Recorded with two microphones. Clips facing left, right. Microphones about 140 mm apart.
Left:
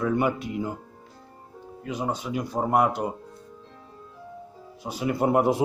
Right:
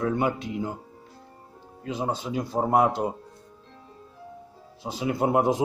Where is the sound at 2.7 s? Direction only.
25° right (ahead or behind).